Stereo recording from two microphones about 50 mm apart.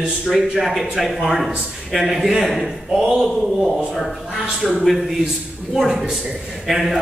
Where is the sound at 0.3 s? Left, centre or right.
Centre.